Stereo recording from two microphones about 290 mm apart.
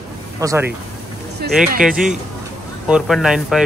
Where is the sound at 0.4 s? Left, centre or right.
Centre.